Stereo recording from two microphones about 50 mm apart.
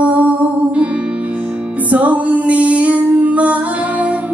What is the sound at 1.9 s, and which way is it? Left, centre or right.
Music, right.